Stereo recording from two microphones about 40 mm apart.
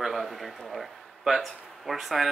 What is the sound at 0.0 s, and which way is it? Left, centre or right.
A man's voice, centre.